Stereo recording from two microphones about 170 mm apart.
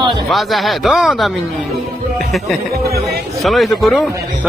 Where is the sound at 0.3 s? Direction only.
Centre (ahead or behind).